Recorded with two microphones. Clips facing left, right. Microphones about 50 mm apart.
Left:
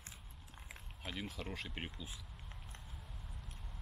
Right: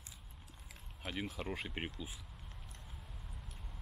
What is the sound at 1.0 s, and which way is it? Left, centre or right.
Speech, centre.